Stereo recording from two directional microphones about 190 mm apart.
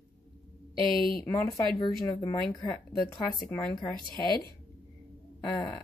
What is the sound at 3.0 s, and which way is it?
Speech, centre (ahead or behind).